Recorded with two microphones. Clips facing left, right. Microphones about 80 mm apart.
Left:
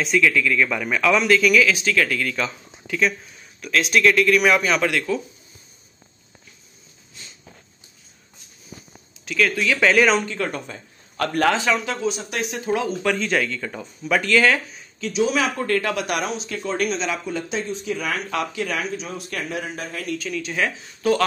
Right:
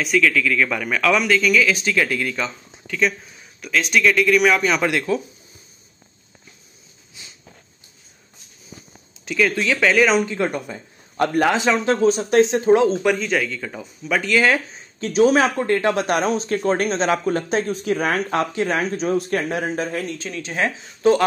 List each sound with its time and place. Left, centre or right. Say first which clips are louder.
0.0 s speech: right 1 dB; centre
2.0 s speech: right 1 dB; centre
2.4 s speech: even; centre
4.8 s speech: right 2 dB; right
7.2 s a sound: even; centre
9.3 s speech: right 1 dB; centre
9.8 s speech: even; centre
10.2 s speech: right 4 dB; centre; by 12.4 s right
12.4 s speech: right 8 dB; right
13.1 s speech: right 1 dB; centre
14.2 s speech: right 1 dB; centre
15.0 s speech: right 6 dB; right